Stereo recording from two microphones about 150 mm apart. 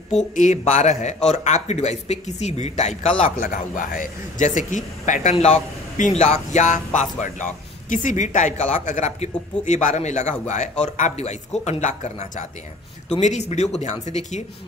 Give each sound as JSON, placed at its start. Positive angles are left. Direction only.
{"t": 0.3, "sound": "a man's voice", "side_deg": 55}